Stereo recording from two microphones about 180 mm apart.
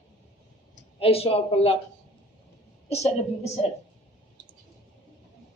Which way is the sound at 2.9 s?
35° left (ahead or behind).